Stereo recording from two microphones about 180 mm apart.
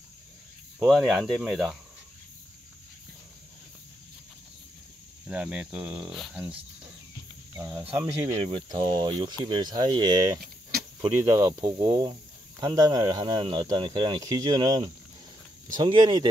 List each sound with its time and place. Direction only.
0.8 s speech: centre (ahead or behind)
5.2 s speech: 5° right (ahead or behind)
7.5 s speech: 10° right (ahead or behind)